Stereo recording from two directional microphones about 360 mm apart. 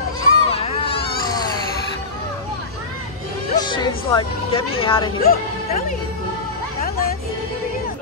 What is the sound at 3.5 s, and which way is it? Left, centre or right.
Music, centre.